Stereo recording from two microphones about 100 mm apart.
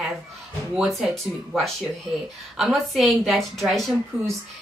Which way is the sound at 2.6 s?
Centre (ahead or behind).